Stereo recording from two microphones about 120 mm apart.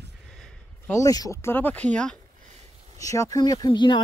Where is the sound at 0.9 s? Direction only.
30° left (ahead or behind); by 2.2 s 10° left (ahead or behind).